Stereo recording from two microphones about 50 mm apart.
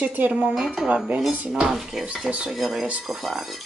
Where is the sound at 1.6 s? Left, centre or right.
Centre.